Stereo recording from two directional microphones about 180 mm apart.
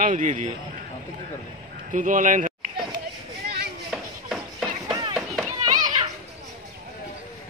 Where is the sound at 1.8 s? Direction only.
45° right (ahead or behind).